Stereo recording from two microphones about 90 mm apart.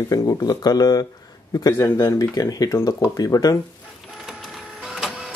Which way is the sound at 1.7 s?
30° left (ahead or behind).